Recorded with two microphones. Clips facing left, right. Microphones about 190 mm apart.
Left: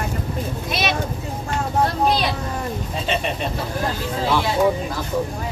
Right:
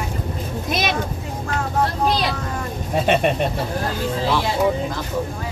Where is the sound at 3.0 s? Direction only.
60° right (ahead or behind).